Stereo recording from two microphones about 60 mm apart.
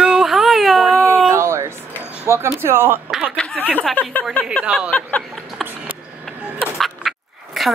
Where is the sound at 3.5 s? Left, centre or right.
Right.